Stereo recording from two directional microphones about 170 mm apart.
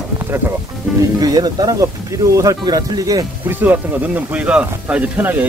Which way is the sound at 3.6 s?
10° right (ahead or behind).